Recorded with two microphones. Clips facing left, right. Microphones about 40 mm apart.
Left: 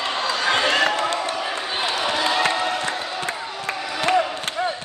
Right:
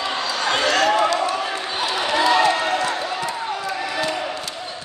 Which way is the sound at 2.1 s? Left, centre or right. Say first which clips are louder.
Right 7 dB; right.